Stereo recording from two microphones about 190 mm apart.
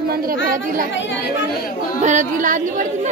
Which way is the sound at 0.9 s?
70° left (ahead or behind).